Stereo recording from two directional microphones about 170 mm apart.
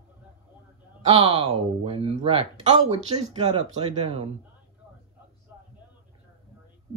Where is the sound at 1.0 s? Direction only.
35° right (ahead or behind).